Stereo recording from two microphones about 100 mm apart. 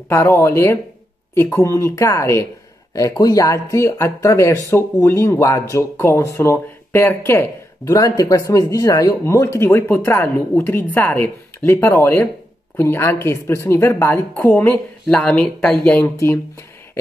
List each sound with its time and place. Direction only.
0.1 s speech: 25° left (ahead or behind)
7.9 s speech: 35° left (ahead or behind)
15.0 s speech: 10° left (ahead or behind)